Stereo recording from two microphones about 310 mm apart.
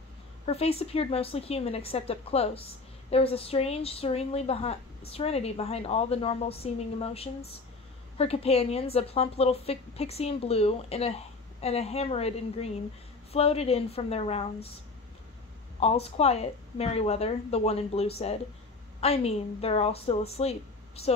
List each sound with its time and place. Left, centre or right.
0.5 s a woman's voice: centre
15.8 s a woman's voice: centre